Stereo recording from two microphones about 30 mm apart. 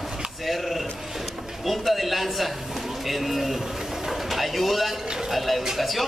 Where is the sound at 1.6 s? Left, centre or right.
Centre.